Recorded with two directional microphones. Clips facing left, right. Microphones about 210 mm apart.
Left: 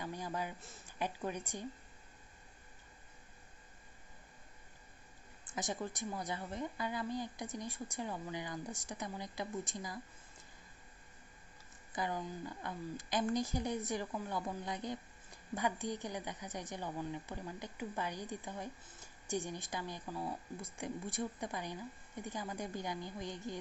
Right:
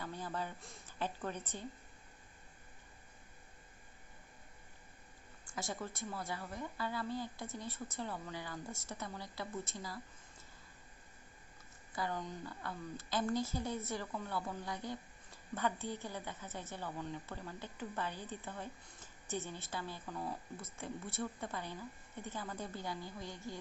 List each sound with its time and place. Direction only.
0.0 s a sound: 15° left (ahead or behind)
0.6 s speech: centre (ahead or behind)
0.8 s a woman's voice: 15° left (ahead or behind)
5.4 s a woman's voice: 20° left (ahead or behind)
11.9 s a woman's voice: 15° left (ahead or behind)